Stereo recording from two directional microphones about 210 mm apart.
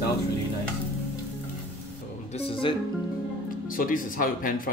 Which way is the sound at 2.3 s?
25° left (ahead or behind).